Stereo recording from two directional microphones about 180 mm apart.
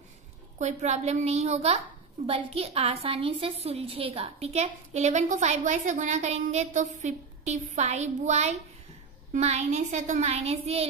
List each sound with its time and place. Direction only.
0.6 s a woman's voice: 40° right (ahead or behind)